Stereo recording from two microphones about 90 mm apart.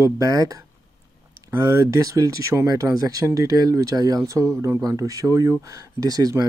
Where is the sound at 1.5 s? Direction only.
35° right (ahead or behind).